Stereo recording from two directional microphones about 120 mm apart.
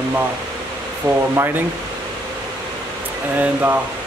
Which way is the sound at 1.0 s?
20° right (ahead or behind).